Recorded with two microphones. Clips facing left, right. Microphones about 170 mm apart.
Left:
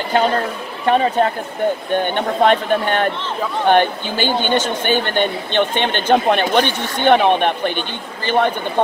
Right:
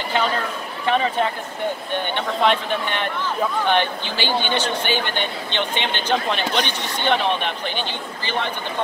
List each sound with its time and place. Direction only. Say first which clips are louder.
0.8 s speech: left 5 dB; 45° left (ahead or behind)